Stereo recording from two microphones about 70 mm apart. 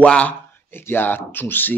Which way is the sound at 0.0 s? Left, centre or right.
Centre.